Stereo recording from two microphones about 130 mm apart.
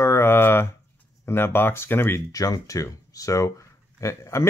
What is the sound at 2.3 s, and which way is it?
Speech, 25° left (ahead or behind).